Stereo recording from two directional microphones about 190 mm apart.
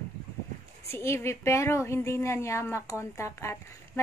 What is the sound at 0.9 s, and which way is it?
A woman's voice, 15° left (ahead or behind).